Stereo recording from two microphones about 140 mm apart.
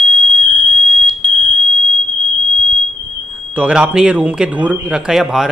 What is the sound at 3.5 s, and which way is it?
Speech, 10° right (ahead or behind).